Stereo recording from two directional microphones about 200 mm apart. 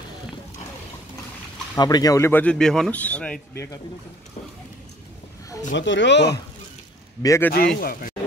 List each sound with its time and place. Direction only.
1.8 s a man's voice: 20° left (ahead or behind)
5.7 s speech: 65° left (ahead or behind)
7.2 s a man's voice: 15° left (ahead or behind)
7.8 s speech: 45° left (ahead or behind)